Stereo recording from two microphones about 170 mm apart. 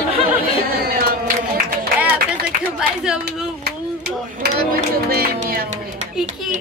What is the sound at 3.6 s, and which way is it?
Speech, 70° right (ahead or behind).